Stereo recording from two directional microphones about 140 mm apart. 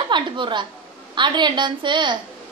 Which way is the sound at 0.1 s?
35° right (ahead or behind).